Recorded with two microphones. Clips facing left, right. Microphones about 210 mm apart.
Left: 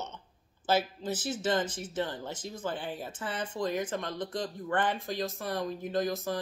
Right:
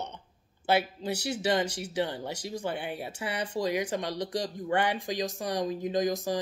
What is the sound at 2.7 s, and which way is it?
Speech, 70° right (ahead or behind).